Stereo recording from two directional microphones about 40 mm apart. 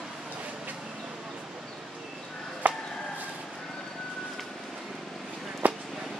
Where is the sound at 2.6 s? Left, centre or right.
Right.